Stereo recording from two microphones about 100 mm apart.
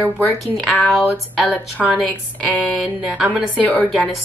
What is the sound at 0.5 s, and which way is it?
Speech, centre (ahead or behind).